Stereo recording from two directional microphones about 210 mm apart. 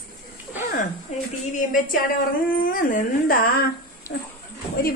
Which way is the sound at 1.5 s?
40° left (ahead or behind).